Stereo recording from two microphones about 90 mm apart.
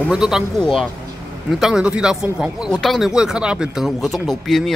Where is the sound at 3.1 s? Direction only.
10° right (ahead or behind).